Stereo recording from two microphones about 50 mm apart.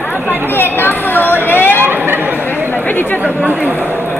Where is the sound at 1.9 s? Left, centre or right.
Right.